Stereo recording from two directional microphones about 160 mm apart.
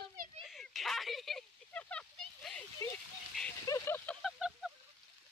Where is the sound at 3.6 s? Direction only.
15° left (ahead or behind).